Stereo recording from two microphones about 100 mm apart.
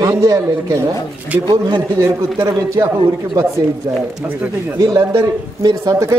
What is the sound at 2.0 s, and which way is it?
Speech, 30° right (ahead or behind).